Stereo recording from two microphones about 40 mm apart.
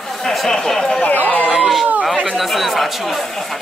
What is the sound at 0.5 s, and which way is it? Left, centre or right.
Speech, centre.